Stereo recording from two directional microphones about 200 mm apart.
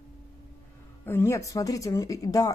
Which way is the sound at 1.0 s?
10° left (ahead or behind).